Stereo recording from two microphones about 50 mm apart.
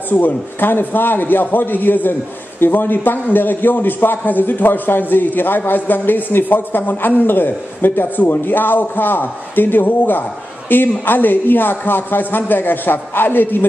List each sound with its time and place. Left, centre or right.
0.1 s a man's voice: left